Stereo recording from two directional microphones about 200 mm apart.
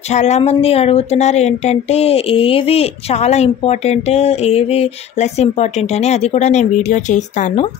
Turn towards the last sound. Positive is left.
turn(degrees=35)  # may be behind; listen again after turning